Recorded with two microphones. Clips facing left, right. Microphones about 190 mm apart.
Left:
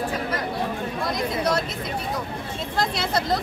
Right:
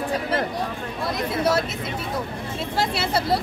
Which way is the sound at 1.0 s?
5° right (ahead or behind).